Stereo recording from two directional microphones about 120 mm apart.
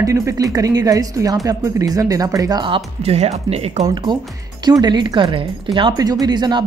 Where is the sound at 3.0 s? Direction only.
65° right (ahead or behind).